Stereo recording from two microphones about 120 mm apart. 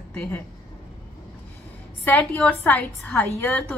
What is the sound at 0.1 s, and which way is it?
Speech, 15° left (ahead or behind).